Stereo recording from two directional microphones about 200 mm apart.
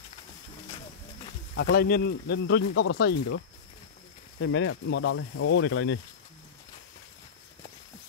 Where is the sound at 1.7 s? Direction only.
50° left (ahead or behind).